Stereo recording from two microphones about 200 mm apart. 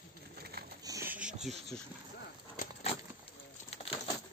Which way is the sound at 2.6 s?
40° left (ahead or behind).